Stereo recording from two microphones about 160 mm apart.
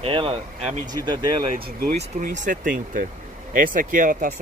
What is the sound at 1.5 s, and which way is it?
Speech, 75° right (ahead or behind).